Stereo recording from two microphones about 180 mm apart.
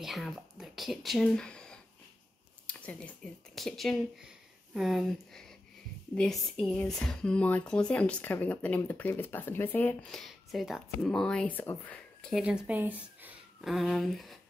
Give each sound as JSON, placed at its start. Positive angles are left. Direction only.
{"t": 0.0, "sound": "speech", "side_deg": 0}
{"t": 12.2, "sound": "speech", "side_deg": 0}